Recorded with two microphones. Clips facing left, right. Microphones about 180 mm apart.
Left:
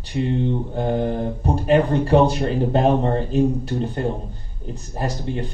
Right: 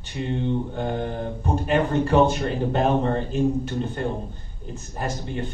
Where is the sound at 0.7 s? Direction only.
35° left (ahead or behind).